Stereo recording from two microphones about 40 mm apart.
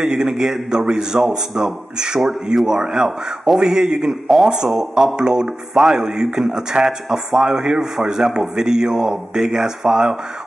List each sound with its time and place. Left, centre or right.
0.0 s a man's voice: centre